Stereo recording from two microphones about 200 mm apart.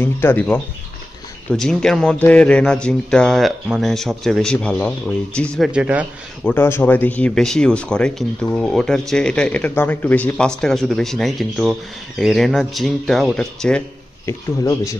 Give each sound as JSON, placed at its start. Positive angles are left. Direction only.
{"t": 0.0, "sound": "speech", "side_deg": 10}
{"t": 5.7, "sound": "speech", "side_deg": -5}
{"t": 6.4, "sound": "speech", "side_deg": 10}